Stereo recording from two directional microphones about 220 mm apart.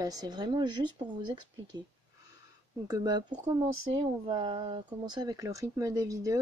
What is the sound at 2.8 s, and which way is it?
Speech, 20° right (ahead or behind).